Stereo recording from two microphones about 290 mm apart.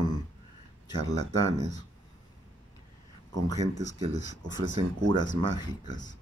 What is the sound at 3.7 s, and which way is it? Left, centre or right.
Speech, left.